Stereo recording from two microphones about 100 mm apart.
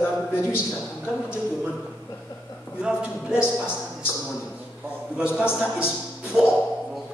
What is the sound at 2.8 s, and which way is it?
Speech, 10° right (ahead or behind).